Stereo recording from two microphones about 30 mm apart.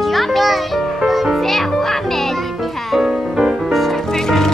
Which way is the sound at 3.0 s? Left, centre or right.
Centre.